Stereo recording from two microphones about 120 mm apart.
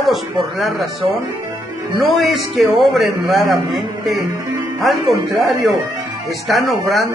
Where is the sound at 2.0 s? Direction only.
Centre (ahead or behind).